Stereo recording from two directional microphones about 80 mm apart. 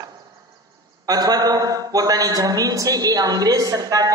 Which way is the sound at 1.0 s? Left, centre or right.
Right.